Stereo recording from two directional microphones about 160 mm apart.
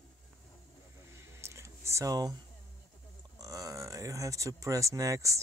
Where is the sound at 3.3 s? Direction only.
20° right (ahead or behind).